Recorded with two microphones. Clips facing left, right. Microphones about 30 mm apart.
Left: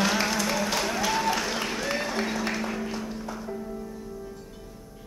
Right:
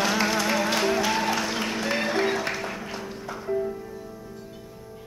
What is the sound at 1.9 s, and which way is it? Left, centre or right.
Music, right.